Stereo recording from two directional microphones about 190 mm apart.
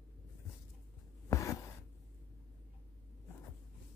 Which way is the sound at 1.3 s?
15° left (ahead or behind).